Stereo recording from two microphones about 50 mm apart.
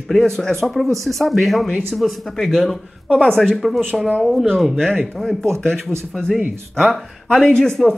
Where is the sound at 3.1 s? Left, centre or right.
Centre.